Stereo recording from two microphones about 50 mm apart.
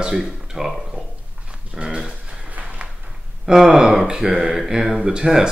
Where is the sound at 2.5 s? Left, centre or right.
Right.